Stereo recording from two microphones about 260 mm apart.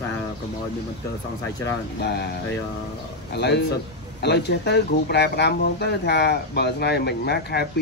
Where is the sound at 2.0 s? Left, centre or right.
Left.